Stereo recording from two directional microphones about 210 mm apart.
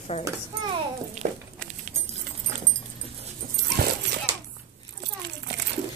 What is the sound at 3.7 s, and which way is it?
Dog, 55° right (ahead or behind).